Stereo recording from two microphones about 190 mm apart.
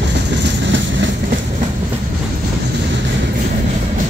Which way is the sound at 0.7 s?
75° right (ahead or behind).